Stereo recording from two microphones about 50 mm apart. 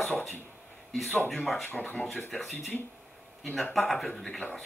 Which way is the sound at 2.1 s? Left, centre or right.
Centre.